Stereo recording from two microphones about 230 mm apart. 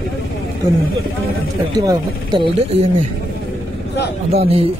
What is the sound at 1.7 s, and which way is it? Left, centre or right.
Speech, centre.